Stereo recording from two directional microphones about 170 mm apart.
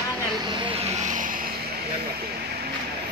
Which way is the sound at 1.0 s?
50° right (ahead or behind).